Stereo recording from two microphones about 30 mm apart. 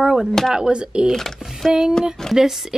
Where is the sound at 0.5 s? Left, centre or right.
Right.